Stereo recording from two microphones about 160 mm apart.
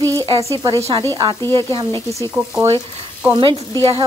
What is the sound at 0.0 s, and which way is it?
Sizzle, 15° left (ahead or behind).